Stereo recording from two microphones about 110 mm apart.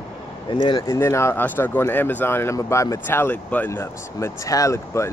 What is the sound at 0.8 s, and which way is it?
Speech, 25° left (ahead or behind).